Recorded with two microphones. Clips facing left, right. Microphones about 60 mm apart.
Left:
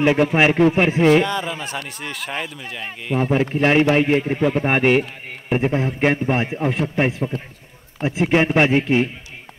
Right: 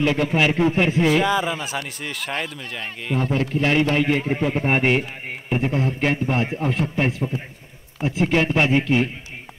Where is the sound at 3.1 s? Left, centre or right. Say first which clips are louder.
Left 4 dB; centre.